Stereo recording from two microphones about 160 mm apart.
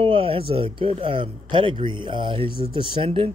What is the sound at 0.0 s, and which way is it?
Speech, 35° right (ahead or behind).